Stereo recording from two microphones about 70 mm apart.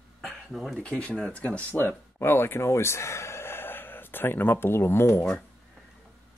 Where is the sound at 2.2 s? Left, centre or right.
Left.